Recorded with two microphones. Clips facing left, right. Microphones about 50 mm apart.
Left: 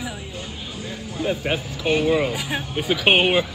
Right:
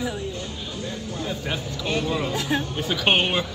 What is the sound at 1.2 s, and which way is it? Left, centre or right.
Speech, left.